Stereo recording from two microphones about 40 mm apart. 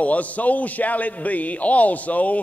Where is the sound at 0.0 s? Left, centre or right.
Left.